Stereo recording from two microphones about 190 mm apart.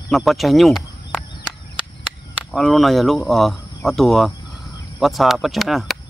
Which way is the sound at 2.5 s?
Centre (ahead or behind).